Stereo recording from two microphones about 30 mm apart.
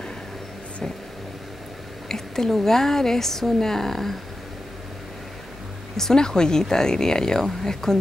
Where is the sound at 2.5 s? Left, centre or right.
Centre.